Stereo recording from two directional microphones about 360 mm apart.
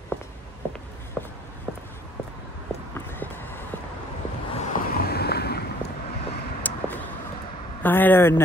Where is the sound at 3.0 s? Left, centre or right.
Centre.